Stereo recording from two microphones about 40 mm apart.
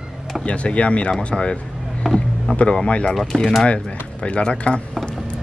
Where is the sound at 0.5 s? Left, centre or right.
Left.